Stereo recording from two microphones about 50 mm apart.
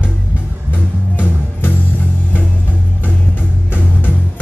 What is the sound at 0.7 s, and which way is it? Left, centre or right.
Music, left.